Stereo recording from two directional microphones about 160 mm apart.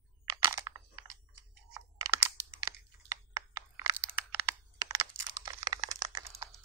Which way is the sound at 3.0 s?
15° right (ahead or behind).